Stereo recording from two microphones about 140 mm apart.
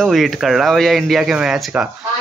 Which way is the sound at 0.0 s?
Centre (ahead or behind).